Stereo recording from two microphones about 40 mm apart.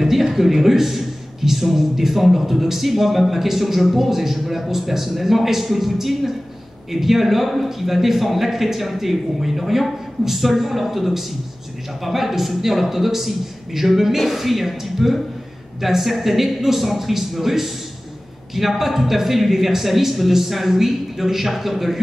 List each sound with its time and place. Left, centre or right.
0.0 s speech: centre